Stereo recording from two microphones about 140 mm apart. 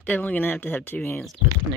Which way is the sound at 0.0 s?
10° left (ahead or behind).